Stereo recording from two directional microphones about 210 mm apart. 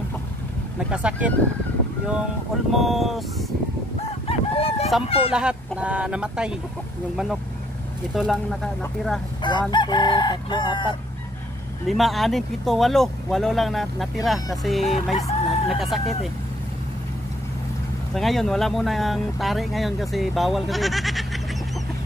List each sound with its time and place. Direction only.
0.7 s speech: 5° right (ahead or behind)
2.7 s speech: centre (ahead or behind)
4.3 s chicken: 30° left (ahead or behind)
5.3 s speech: 5° right (ahead or behind)
8.1 s speech: centre (ahead or behind)
9.4 s chicken: 20° left (ahead or behind)
11.9 s speech: centre (ahead or behind)
15.1 s chicken: 30° left (ahead or behind)
15.8 s speech: centre (ahead or behind)
18.1 s speech: centre (ahead or behind)